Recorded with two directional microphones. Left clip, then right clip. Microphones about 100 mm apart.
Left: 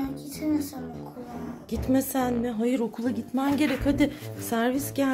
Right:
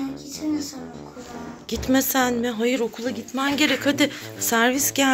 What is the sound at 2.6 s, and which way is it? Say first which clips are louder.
Speech: right 4 dB; 25° left (ahead or behind).